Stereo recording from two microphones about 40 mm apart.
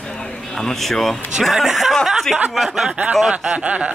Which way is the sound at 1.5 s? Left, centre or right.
Centre.